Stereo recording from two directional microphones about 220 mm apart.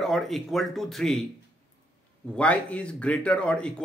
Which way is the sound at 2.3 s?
5° left (ahead or behind).